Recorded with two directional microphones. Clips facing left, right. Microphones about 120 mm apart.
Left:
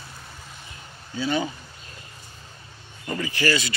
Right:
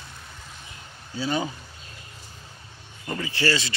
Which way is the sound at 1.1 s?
35° right (ahead or behind).